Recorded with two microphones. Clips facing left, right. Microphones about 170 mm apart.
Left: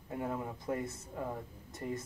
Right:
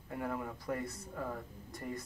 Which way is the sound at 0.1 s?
20° left (ahead or behind).